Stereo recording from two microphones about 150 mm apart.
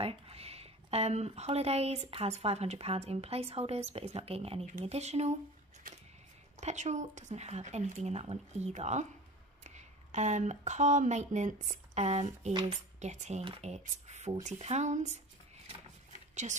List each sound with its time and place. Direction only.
0.0 s speech: 40° right (ahead or behind)
5.9 s music: 65° right (ahead or behind)
6.6 s speech: 50° right (ahead or behind)
13.4 s speech: 35° right (ahead or behind)
13.7 s speech: 50° right (ahead or behind)
15.6 s a sound: 45° right (ahead or behind)